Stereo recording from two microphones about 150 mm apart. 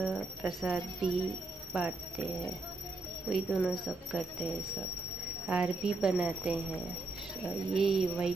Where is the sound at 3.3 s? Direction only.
Centre (ahead or behind).